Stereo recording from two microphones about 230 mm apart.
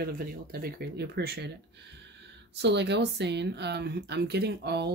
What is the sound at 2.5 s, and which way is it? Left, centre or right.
Speech, right.